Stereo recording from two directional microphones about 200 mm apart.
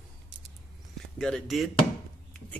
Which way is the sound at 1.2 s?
5° left (ahead or behind).